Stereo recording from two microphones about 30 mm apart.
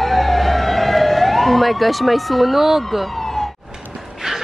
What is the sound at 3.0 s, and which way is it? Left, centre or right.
Emergency vehicle, centre.